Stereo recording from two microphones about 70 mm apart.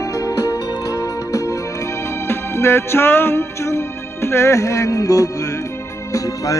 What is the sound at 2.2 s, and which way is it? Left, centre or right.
Music, left.